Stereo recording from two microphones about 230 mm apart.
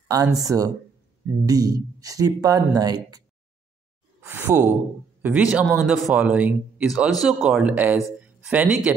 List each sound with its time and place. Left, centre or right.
0.1 s speech: centre
4.2 s speech: centre